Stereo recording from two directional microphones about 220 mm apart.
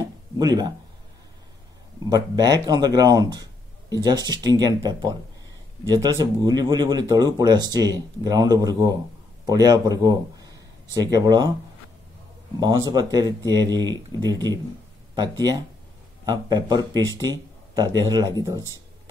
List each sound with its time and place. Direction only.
0.4 s speech: 20° right (ahead or behind)
2.0 s speech: 20° right (ahead or behind)
12.5 s speech: 15° right (ahead or behind)